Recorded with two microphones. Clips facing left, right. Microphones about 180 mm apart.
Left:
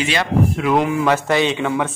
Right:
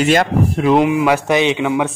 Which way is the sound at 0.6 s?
20° right (ahead or behind).